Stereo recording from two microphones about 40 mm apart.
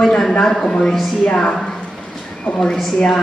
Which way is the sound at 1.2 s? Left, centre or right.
Left.